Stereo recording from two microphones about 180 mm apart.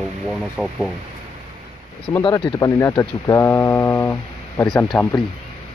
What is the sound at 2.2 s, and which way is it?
Speech, 25° left (ahead or behind).